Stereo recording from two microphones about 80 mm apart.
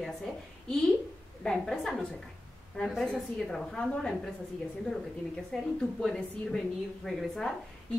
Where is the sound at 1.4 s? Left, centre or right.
Centre.